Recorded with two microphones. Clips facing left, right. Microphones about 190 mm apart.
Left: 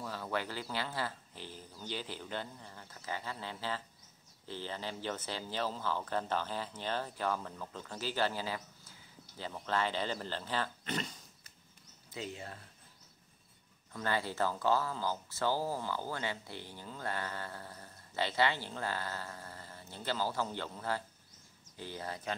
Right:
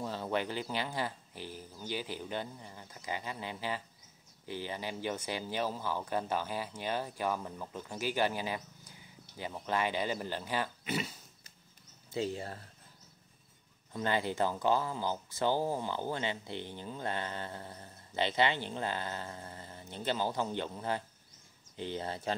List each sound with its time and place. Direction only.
0.0 s speech: 25° right (ahead or behind); by 11.1 s 10° right (ahead or behind)
12.1 s speech: 35° right (ahead or behind)
13.9 s speech: 20° right (ahead or behind)